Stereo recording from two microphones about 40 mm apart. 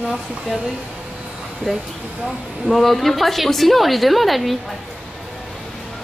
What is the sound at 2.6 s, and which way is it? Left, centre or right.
A woman's voice, centre.